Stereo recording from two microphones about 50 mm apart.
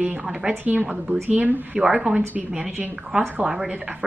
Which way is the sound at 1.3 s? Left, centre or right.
Right.